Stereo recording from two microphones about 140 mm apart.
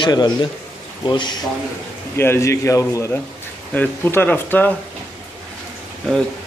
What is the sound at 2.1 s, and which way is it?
A man's voice, 15° left (ahead or behind).